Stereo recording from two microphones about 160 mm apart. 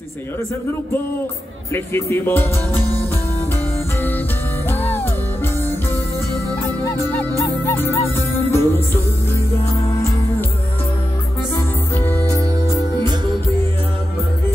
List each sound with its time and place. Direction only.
1.7 s speech: 15° left (ahead or behind)
4.6 s music: 15° left (ahead or behind)
6.8 s music: 15° left (ahead or behind)
12.0 s music: 15° left (ahead or behind)